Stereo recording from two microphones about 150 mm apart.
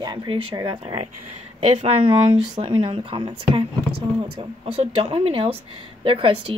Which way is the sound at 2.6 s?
35° right (ahead or behind).